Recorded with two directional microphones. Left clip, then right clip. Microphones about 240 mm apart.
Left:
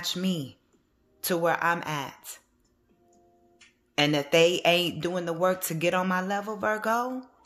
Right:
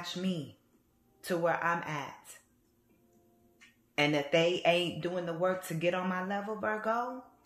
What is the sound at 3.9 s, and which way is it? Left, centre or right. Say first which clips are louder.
A woman's voice: left 6 dB; left.